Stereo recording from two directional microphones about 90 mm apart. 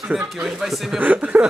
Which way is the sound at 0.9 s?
15° right (ahead or behind).